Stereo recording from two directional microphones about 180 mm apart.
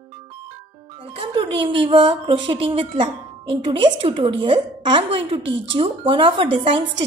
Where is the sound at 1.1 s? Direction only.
30° right (ahead or behind).